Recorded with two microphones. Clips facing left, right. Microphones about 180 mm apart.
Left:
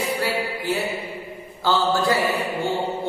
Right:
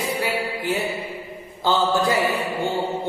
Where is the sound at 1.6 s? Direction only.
20° right (ahead or behind).